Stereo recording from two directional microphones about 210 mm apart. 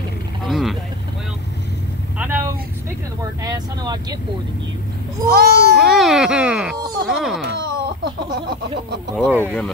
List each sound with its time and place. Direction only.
0.5 s speech: centre (ahead or behind)
2.1 s vehicle: 10° right (ahead or behind)
3.2 s speech: 15° right (ahead or behind)
5.3 s speech: 50° right (ahead or behind)
5.8 s speech: centre (ahead or behind)
7.8 s a sound: 50° right (ahead or behind)
9.1 s speech: 10° right (ahead or behind)